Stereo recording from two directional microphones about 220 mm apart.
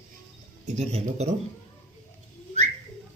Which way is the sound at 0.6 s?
30° right (ahead or behind).